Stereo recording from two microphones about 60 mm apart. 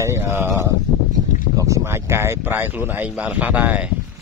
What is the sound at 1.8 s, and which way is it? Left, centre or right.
Speech, right.